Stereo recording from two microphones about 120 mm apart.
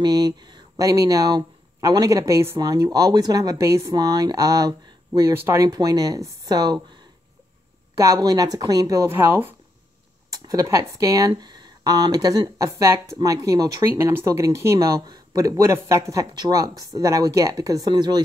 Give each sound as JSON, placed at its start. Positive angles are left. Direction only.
{"t": 0.0, "sound": "speech", "side_deg": -35}
{"t": 8.0, "sound": "speech", "side_deg": -30}
{"t": 13.8, "sound": "speech", "side_deg": -20}